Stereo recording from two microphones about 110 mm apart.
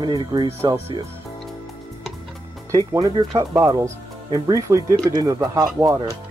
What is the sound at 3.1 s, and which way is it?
Speech, 40° right (ahead or behind).